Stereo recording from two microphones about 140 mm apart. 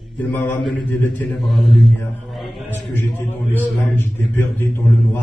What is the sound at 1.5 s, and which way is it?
Mantra, centre (ahead or behind).